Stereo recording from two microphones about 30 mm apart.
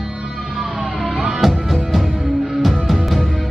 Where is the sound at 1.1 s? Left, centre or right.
Centre.